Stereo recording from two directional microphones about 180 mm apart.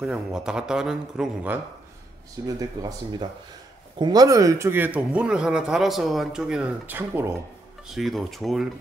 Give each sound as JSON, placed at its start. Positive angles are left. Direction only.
{"t": 0.0, "sound": "a man's voice", "side_deg": -5}
{"t": 2.4, "sound": "speech", "side_deg": -20}
{"t": 7.9, "sound": "a man's voice", "side_deg": 0}